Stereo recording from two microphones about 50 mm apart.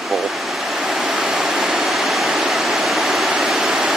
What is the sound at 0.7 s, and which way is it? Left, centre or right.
Waterfall, centre.